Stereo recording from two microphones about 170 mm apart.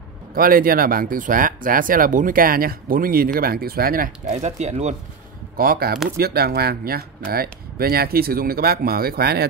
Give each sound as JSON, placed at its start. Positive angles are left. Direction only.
{"t": 0.3, "sound": "speech", "side_deg": -55}
{"t": 4.4, "sound": "speech", "side_deg": -40}
{"t": 5.6, "sound": "speech", "side_deg": -60}